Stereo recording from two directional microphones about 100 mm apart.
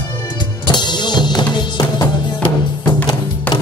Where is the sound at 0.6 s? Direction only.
50° left (ahead or behind).